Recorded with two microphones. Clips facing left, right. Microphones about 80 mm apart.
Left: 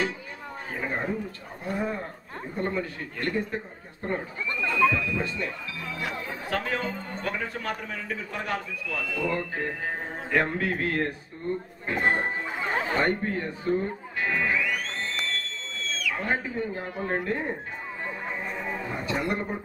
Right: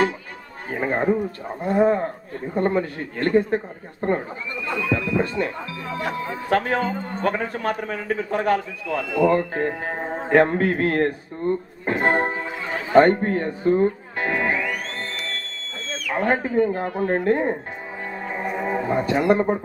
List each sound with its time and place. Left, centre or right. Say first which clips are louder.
0.7 s a sound: right 9 dB; right
1.6 s speech: right 12 dB; right
4.6 s a sound: even; right
6.5 s speech: right 8 dB; right
8.8 s speech: right 12 dB; right
9.3 s speech: right 9 dB; right
12.9 s music: right 15 dB; right